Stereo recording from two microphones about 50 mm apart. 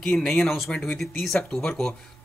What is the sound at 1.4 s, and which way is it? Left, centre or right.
Speech, centre.